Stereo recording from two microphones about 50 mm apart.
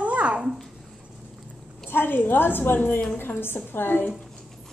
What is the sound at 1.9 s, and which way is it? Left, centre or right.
A woman's voice, left.